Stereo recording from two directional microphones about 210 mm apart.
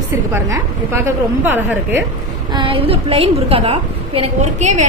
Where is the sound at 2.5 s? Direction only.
25° right (ahead or behind).